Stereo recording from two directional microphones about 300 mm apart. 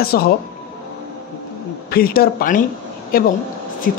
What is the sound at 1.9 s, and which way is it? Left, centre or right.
Speech, left.